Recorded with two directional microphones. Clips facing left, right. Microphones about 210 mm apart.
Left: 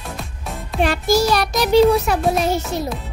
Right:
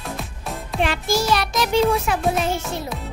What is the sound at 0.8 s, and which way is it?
Music, 40° left (ahead or behind).